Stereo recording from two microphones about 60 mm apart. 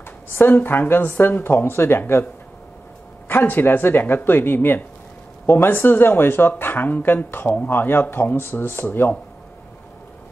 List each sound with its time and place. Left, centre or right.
0.3 s speech: left
3.3 s speech: left